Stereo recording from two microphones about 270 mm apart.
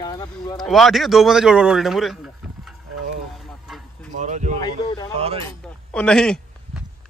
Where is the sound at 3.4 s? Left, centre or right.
Centre.